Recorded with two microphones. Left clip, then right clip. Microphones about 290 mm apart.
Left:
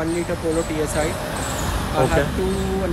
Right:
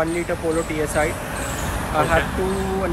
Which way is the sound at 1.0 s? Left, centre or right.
Centre.